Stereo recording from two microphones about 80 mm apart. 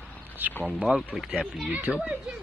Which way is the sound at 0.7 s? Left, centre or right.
Centre.